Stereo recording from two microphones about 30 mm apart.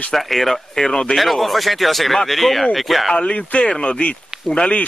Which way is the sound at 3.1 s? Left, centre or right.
Left.